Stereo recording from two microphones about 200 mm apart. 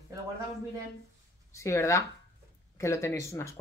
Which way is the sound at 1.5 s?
15° left (ahead or behind).